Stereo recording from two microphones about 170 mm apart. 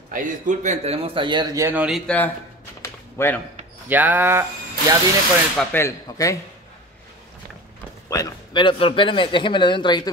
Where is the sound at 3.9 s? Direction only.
10° right (ahead or behind).